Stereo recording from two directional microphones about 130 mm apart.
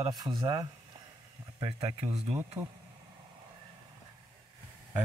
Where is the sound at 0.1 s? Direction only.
30° right (ahead or behind).